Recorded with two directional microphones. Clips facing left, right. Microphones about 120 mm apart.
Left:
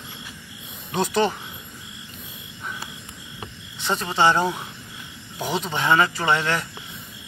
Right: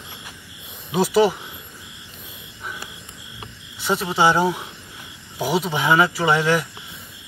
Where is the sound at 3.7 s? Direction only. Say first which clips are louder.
Right 2 dB; 5° right (ahead or behind).